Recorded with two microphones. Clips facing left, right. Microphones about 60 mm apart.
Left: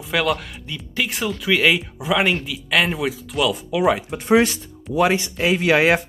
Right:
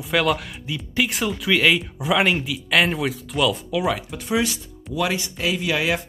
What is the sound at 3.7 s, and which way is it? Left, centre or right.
Speech, centre.